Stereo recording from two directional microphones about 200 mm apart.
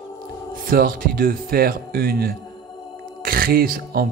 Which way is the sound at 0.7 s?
45° right (ahead or behind).